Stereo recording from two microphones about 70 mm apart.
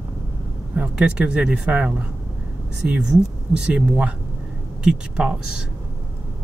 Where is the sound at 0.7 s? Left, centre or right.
Centre.